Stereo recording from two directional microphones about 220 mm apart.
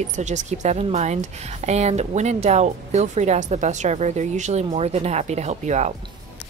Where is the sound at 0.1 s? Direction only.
35° right (ahead or behind).